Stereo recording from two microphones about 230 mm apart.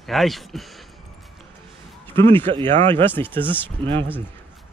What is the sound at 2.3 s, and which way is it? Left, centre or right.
Speech, right.